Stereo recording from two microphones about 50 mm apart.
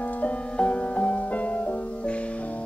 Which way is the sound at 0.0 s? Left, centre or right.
Left.